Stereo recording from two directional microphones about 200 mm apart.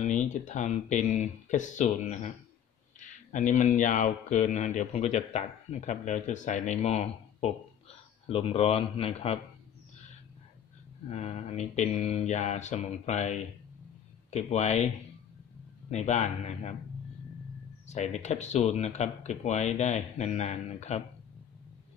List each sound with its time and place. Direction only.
0.0 s speech: 35° left (ahead or behind)
11.1 s speech: 30° left (ahead or behind)
15.9 s speech: 35° left (ahead or behind)
17.8 s speech: 35° left (ahead or behind)